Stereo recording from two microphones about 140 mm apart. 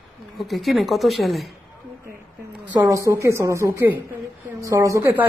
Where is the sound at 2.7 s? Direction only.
25° right (ahead or behind).